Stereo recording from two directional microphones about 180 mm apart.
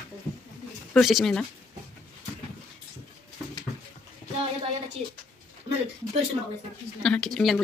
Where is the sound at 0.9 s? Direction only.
Centre (ahead or behind).